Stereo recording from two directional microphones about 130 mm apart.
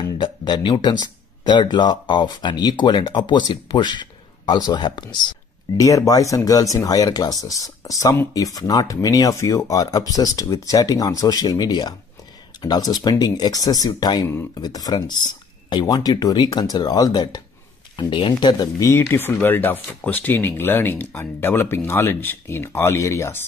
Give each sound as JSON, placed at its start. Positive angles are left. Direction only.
{"t": 0.2, "sound": "speech", "side_deg": 35}
{"t": 5.8, "sound": "speech", "side_deg": 25}